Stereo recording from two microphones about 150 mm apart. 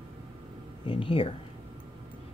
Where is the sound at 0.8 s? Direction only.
35° left (ahead or behind).